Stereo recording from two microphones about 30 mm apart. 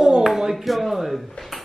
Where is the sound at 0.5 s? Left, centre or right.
Centre.